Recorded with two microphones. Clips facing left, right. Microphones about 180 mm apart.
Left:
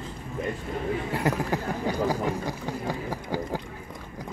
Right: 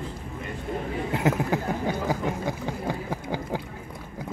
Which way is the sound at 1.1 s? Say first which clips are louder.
Right 4 dB; 20° right (ahead or behind).